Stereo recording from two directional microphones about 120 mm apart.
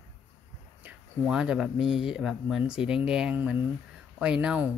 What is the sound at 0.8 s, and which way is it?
Speech, 10° right (ahead or behind).